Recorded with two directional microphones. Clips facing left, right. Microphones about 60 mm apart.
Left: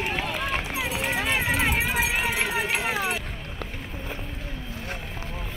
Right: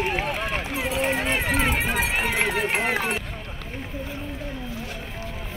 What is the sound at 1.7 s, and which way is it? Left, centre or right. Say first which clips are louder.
Run: right 1 dB; right.